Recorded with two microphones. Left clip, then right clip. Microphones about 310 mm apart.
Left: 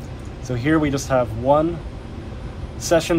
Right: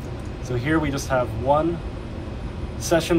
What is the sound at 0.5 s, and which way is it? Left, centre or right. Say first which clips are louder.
Speech: left 4 dB; left.